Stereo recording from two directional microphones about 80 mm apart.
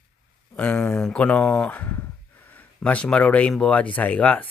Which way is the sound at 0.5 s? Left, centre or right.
Centre.